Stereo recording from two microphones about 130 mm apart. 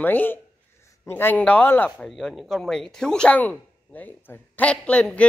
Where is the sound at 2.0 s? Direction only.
Centre (ahead or behind).